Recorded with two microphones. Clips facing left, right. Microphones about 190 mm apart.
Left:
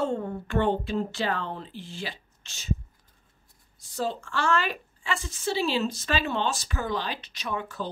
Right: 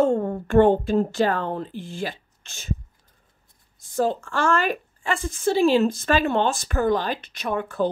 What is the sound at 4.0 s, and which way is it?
A woman's voice, 50° right (ahead or behind).